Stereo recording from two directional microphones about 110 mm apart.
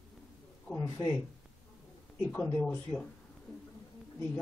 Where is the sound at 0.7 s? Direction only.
25° left (ahead or behind).